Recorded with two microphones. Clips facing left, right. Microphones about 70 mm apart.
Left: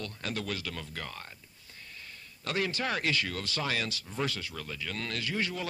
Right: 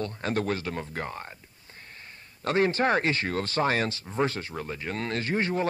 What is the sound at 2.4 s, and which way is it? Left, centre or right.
Speech, right.